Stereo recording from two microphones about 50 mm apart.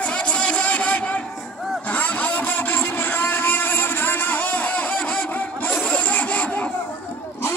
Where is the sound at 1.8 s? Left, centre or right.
Left.